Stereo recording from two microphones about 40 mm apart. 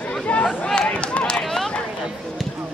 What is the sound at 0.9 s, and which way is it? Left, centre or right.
Chop, left.